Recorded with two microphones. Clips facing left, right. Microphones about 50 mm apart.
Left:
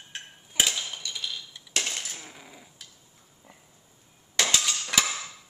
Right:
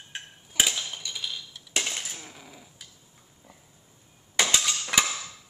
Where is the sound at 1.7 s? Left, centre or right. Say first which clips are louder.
Right 1 dB; centre.